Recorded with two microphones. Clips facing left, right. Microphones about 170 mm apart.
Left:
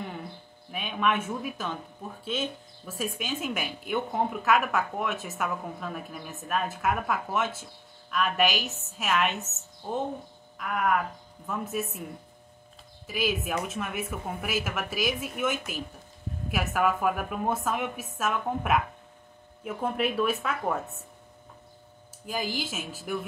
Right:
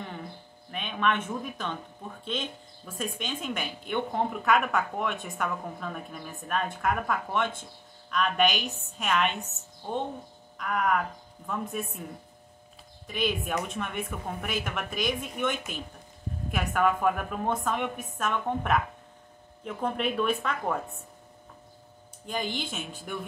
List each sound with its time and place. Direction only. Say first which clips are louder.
0.7 s speech: left 1 dB; 5° left (ahead or behind)
10.6 s speech: even; 5° left (ahead or behind)
13.0 s speech: left 1 dB; 5° left (ahead or behind)
22.2 s speech: left 1 dB; 5° left (ahead or behind)